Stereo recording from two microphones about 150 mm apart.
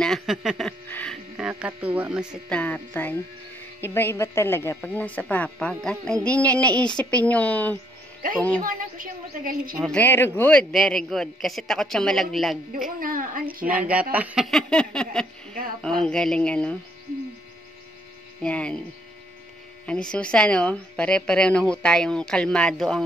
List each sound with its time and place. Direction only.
0.0 s speech: centre (ahead or behind)
0.8 s music: 10° left (ahead or behind)
1.5 s speech: 10° right (ahead or behind)
2.5 s speech: 10° left (ahead or behind)
8.6 s a woman's voice: 65° right (ahead or behind)
9.8 s speech: 10° left (ahead or behind)
13.0 s a woman's voice: 65° right (ahead or behind)
13.7 s speech: 10° right (ahead or behind); by 16.7 s 5° left (ahead or behind)
18.4 s speech: 5° left (ahead or behind)
19.9 s speech: 5° left (ahead or behind)